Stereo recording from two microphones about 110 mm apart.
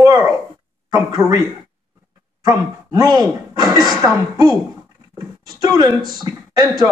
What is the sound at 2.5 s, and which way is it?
Speech, 35° right (ahead or behind).